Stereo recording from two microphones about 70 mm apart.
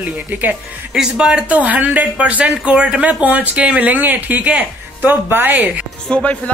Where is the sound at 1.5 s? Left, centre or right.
Right.